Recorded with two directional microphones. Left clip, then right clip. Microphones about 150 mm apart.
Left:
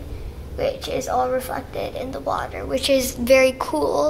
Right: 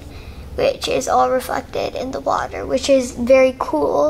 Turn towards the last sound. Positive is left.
turn(degrees=-20)  # may be behind; listen again after turning